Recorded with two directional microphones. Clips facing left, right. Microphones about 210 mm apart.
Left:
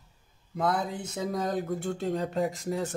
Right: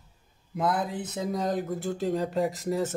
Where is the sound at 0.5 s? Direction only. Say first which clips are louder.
Right 1 dB; centre (ahead or behind).